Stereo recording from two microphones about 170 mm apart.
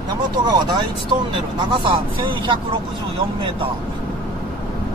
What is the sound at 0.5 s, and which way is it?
Speech, 25° right (ahead or behind).